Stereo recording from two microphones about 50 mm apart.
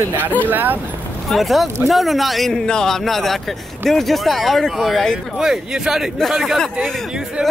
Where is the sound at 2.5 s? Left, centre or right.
Centre.